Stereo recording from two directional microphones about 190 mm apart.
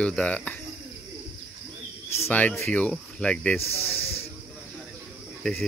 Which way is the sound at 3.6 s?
30° left (ahead or behind).